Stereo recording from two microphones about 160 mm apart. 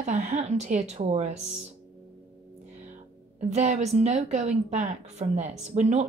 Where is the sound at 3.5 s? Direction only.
45° right (ahead or behind).